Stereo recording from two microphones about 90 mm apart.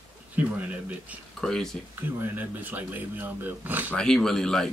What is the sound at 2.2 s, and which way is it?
Speech, 20° right (ahead or behind).